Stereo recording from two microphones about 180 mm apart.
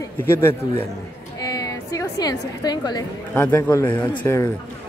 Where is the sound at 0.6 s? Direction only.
20° left (ahead or behind).